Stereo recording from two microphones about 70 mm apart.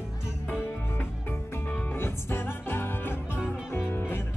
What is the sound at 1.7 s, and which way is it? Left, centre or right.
Music, left.